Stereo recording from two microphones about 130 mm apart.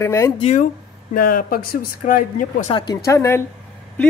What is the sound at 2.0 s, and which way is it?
Speech, 80° left.